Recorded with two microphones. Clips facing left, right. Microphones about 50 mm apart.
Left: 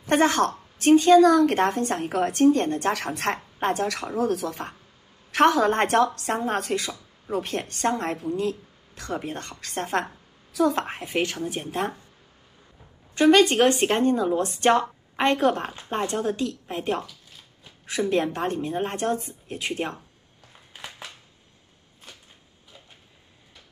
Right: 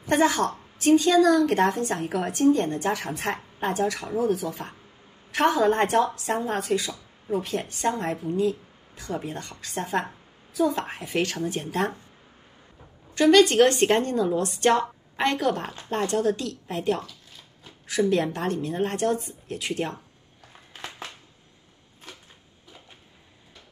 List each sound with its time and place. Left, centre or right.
0.1 s a woman's voice: left
3.5 s speech: left
3.9 s speech: left
5.7 s a woman's voice: left
11.0 s a woman's voice: left
11.4 s speech: centre
13.1 s a woman's voice: left
13.6 s a woman's voice: centre
14.0 s speech: centre
14.6 s a woman's voice: left
15.7 s a woman's voice: left